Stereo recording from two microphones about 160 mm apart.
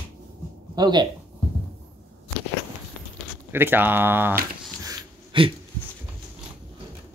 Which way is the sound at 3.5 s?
15° right (ahead or behind).